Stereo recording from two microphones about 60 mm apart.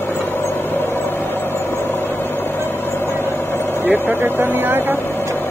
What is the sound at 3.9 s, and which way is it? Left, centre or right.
Vehicle, right.